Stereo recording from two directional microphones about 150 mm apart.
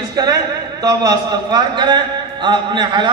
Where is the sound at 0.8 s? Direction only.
25° right (ahead or behind).